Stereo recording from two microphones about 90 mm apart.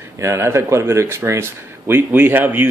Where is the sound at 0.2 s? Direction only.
30° right (ahead or behind).